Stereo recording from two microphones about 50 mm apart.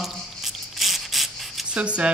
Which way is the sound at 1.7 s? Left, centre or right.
Right.